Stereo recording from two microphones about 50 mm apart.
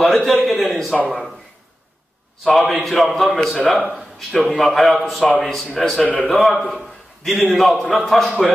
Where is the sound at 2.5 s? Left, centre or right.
Centre.